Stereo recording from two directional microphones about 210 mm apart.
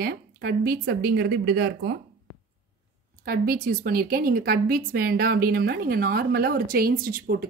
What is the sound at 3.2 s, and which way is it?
A woman's voice, 45° right (ahead or behind).